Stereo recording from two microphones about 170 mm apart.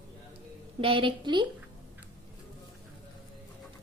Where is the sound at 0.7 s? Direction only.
30° right (ahead or behind).